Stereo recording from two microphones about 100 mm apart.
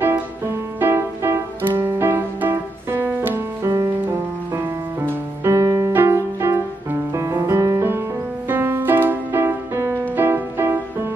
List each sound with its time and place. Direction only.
0.7 s music: 20° right (ahead or behind)